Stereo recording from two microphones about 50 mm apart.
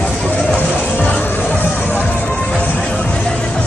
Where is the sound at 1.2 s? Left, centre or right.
Left.